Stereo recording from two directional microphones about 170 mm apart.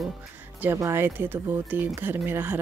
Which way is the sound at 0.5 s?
15° right (ahead or behind).